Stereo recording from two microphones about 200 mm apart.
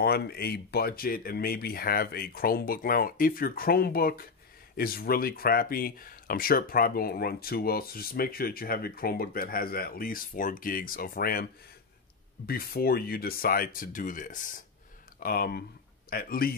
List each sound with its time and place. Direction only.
0.0 s speech: 50° left (ahead or behind)
12.4 s speech: 50° left (ahead or behind)